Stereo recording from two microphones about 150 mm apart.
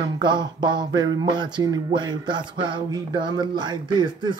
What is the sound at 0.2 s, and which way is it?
Speech, 30° right (ahead or behind).